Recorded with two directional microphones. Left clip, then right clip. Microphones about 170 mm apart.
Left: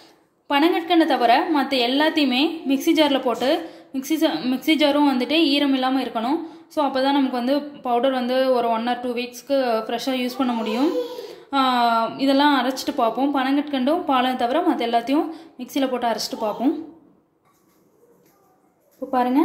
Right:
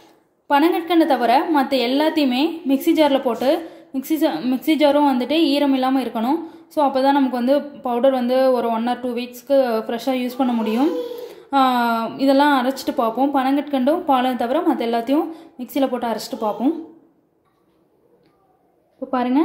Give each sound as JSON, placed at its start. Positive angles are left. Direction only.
{"t": 0.5, "sound": "a woman's voice", "side_deg": -20}
{"t": 19.0, "sound": "a woman's voice", "side_deg": -20}